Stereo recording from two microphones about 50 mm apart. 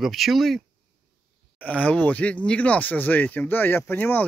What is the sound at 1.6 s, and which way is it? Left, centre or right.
Speech, left.